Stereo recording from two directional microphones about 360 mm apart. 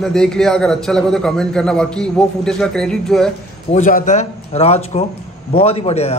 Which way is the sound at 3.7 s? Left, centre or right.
Left.